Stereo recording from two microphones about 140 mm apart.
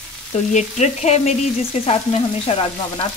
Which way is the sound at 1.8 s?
45° left (ahead or behind).